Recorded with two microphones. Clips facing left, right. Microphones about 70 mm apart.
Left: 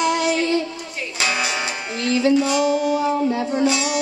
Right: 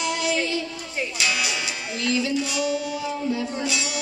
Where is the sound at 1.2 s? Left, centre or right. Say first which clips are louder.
Left 5 dB; left.